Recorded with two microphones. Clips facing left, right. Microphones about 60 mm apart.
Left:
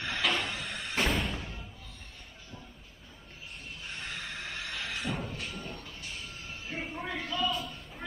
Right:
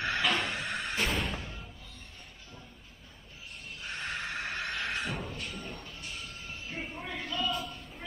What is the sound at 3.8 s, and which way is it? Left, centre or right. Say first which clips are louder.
Neigh: right 4 dB; right.